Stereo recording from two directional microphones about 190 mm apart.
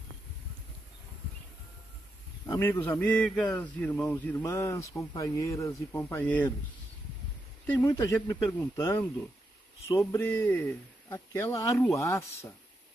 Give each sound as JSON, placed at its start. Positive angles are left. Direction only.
{"t": 2.4, "sound": "speech", "side_deg": 20}
{"t": 3.0, "sound": "speech", "side_deg": 5}
{"t": 7.6, "sound": "speech", "side_deg": 10}